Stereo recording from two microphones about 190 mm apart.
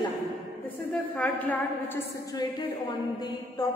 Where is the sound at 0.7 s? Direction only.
5° left (ahead or behind).